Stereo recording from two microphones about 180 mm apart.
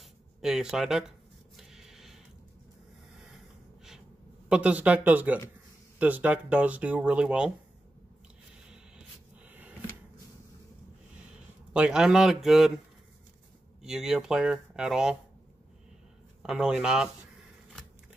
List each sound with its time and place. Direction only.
0.4 s speech: 5° right (ahead or behind)
1.6 s snort: centre (ahead or behind)
4.5 s speech: 5° right (ahead or behind)
9.5 s a sound: 10° right (ahead or behind)
11.7 s speech: 5° right (ahead or behind)
13.8 s speech: 5° right (ahead or behind)
16.4 s speech: 5° right (ahead or behind)